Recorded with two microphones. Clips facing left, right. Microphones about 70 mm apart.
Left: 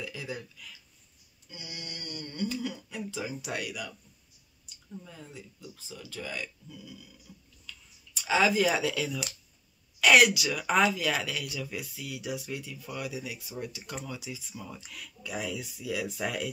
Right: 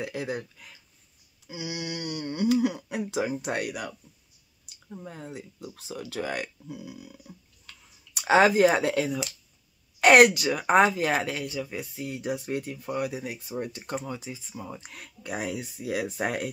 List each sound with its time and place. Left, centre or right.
0.0 s speech: right
1.5 s speech: right
4.9 s speech: right
7.2 s clicking: right
9.9 s speech: right
14.8 s speech: right